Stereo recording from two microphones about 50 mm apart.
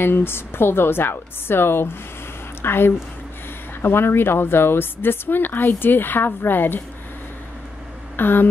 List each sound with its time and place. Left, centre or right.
0.0 s a woman's voice: left
8.2 s a woman's voice: left